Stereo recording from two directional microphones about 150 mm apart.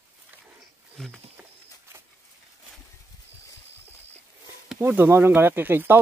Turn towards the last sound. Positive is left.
turn(degrees=-15)  # may be behind; listen again after turning